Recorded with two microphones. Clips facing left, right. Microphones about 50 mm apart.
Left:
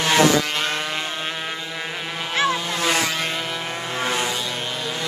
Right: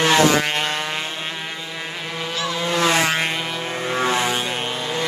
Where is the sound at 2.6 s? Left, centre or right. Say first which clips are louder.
Right 4 dB; right.